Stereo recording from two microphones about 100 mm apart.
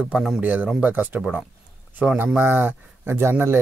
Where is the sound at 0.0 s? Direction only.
5° right (ahead or behind).